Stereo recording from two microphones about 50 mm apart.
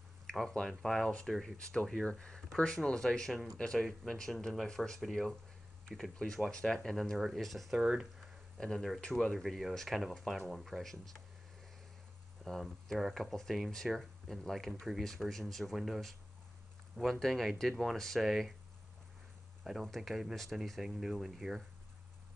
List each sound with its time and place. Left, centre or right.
0.3 s speech: centre
1.6 s speech: centre
6.1 s speech: centre
7.7 s speech: centre
8.5 s speech: centre
12.4 s speech: centre
19.7 s speech: centre
20.1 s speech: centre